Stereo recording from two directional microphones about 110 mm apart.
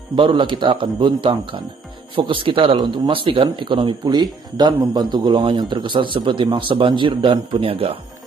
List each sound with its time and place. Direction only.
0.1 s a man's voice: 50° right (ahead or behind)